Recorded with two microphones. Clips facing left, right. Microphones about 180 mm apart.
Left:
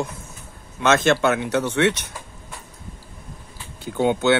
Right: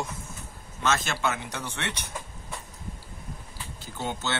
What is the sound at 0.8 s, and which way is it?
Speech, 70° left (ahead or behind).